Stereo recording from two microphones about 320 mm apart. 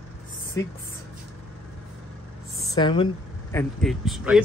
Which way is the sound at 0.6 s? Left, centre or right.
Centre.